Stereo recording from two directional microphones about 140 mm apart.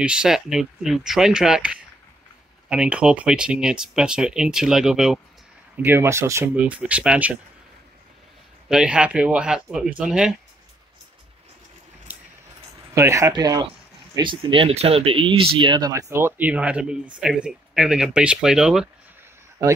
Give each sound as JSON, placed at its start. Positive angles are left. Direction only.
{"t": 0.0, "sound": "speech", "side_deg": -5}
{"t": 5.9, "sound": "speech", "side_deg": -20}
{"t": 8.6, "sound": "speech", "side_deg": -5}
{"t": 12.9, "sound": "speech", "side_deg": -20}
{"t": 15.9, "sound": "speech", "side_deg": -20}